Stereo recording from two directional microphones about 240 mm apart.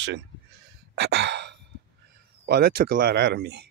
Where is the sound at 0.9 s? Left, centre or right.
Right.